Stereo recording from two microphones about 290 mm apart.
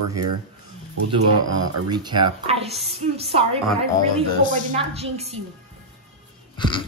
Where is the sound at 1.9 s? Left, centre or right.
Centre.